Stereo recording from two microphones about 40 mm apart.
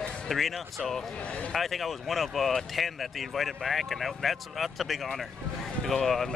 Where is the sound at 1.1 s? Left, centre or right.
Left.